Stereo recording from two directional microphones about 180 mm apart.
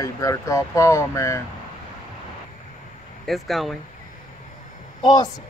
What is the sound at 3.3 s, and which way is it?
Speech, centre (ahead or behind).